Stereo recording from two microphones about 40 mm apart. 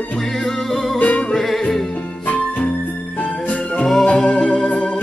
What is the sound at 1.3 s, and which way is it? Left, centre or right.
Music, centre.